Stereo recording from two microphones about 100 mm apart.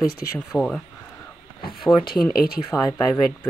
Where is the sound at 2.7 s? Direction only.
30° left (ahead or behind).